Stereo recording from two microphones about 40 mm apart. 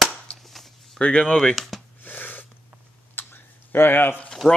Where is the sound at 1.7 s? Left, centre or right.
Centre.